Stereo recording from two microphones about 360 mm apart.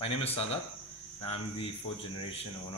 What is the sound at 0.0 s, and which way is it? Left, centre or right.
A man's voice, centre.